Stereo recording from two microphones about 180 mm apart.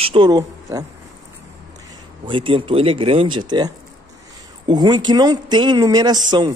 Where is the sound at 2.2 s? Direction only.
30° right (ahead or behind).